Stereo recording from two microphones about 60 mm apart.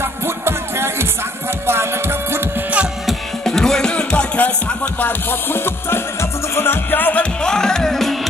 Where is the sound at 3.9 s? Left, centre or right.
Centre.